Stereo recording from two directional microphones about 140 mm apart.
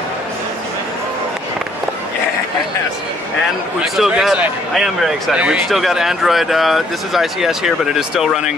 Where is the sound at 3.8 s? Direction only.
Centre (ahead or behind).